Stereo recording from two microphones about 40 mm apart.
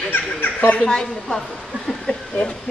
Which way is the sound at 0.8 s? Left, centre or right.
Centre.